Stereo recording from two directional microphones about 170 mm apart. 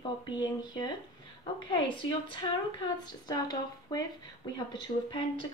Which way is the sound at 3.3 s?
20° left (ahead or behind).